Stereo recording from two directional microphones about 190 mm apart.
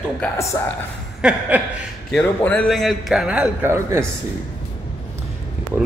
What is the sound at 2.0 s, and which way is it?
A man's voice, 5° left (ahead or behind).